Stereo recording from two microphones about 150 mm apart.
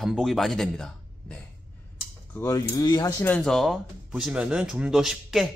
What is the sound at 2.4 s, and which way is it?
A man's voice, 25° left (ahead or behind).